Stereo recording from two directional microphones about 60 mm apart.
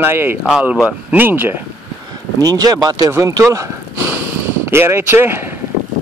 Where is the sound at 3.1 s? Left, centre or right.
Right.